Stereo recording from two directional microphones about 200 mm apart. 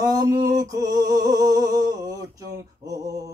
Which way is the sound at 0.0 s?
20° right (ahead or behind).